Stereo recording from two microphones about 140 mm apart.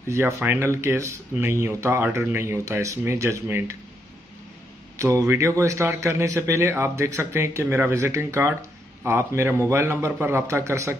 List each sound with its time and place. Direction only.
0.1 s speech: 15° right (ahead or behind)
4.9 s a man's voice: 20° right (ahead or behind)